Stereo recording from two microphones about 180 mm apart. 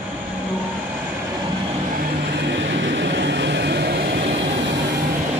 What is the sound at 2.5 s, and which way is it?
Vehicle, 80° right.